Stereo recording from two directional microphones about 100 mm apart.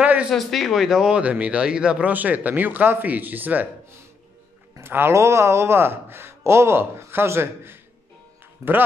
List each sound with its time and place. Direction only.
0.0 s a sound: 15° right (ahead or behind)
0.3 s speech: centre (ahead or behind); by 3.6 s 15° right (ahead or behind)
4.7 s speech: 25° right (ahead or behind)